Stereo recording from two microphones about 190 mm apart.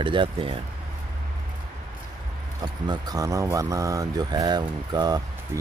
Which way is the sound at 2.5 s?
20° right (ahead or behind).